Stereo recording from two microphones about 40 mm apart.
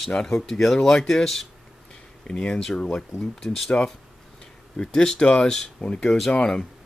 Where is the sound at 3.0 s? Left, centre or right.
Centre.